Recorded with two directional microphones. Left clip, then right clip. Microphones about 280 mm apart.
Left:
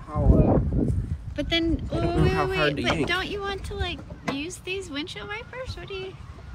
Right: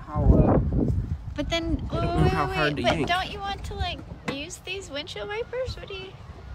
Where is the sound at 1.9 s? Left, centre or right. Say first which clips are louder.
Left 1 dB; centre.